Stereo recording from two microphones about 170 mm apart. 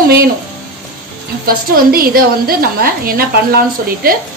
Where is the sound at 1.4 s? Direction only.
60° right (ahead or behind).